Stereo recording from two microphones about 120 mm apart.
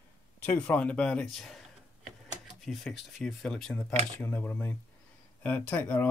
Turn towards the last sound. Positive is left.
turn(degrees=15)  # may be behind; listen again after turning